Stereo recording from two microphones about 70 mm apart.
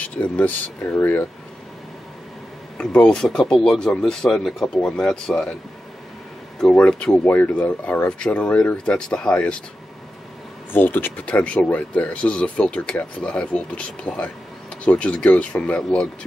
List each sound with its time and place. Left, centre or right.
0.0 s speech: left
2.8 s speech: centre
6.6 s speech: centre
10.7 s speech: left